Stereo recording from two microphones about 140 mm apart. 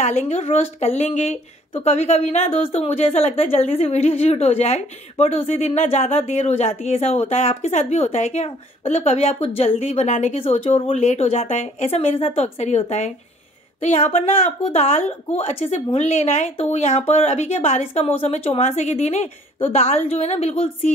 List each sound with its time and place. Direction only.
0.0 s speech: 55° left (ahead or behind)